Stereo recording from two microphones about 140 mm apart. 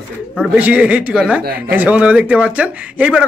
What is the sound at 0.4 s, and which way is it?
Speech, 10° right (ahead or behind).